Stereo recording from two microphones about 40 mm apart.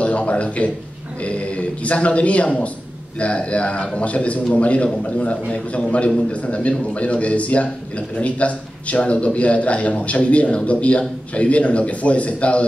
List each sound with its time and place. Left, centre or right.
0.0 s a man's voice: left